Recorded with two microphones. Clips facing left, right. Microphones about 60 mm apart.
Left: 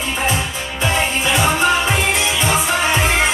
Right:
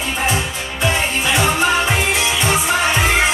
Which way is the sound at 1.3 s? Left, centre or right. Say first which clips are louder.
Even; centre.